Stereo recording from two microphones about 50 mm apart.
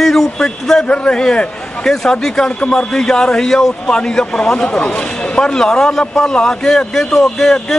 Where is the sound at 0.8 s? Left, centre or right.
Left.